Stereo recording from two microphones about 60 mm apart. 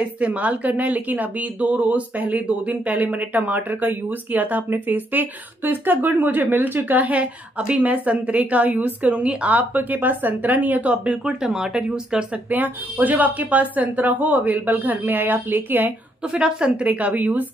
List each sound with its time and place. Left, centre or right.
0.0 s speech: right
12.4 s speech: right
16.3 s speech: centre